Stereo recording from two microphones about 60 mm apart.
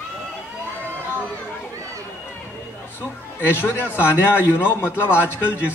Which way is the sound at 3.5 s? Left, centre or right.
Left.